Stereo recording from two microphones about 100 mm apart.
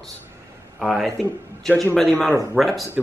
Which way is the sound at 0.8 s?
5° left (ahead or behind).